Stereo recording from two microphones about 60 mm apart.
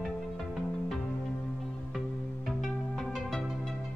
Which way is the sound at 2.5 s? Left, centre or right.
Centre.